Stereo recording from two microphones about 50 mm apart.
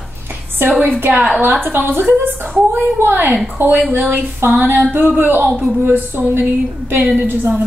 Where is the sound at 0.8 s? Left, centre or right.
Right.